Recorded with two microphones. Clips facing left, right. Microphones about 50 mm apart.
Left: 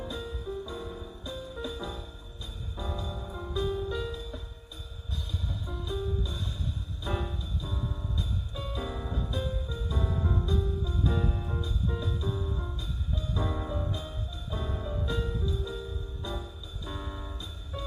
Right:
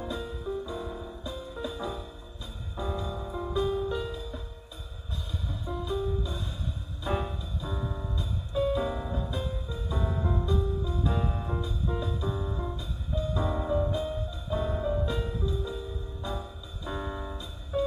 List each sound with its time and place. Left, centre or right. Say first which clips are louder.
0.0 s music: right 2 dB; centre
5.5 s music: right 6 dB; centre